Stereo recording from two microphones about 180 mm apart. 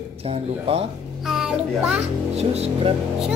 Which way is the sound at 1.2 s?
5° right (ahead or behind).